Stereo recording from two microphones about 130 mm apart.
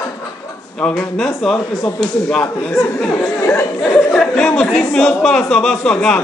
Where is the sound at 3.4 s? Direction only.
20° left (ahead or behind).